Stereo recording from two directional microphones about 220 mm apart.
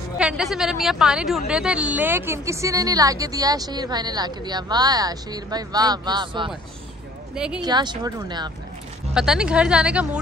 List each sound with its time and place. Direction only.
0.2 s a woman's voice: centre (ahead or behind); by 6.5 s 20° right (ahead or behind)
7.3 s a woman's voice: 5° right (ahead or behind)
7.6 s speech: 20° right (ahead or behind)
9.1 s a woman's voice: 5° right (ahead or behind)